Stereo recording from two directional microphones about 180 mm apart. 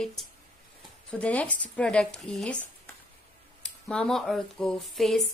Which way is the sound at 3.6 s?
5° left (ahead or behind).